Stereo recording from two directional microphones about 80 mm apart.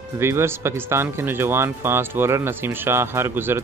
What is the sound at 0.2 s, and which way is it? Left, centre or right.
Speech, right.